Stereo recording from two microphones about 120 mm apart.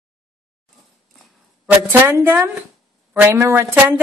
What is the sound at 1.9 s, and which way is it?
A woman's voice, 20° right (ahead or behind).